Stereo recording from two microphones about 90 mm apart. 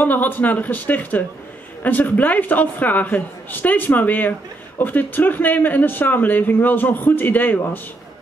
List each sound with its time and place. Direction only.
0.0 s a man's voice: 20° left (ahead or behind)